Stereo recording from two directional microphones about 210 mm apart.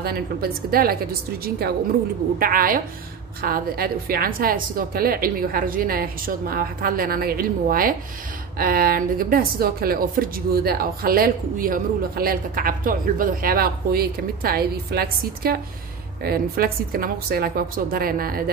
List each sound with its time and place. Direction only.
0.0 s speech: 45° right (ahead or behind)
2.3 s speech: 45° right (ahead or behind)